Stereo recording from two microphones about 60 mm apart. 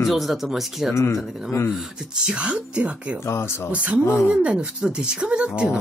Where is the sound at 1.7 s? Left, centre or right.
Centre.